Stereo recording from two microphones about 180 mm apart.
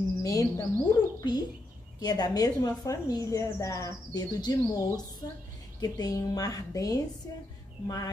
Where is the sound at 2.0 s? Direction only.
20° left (ahead or behind).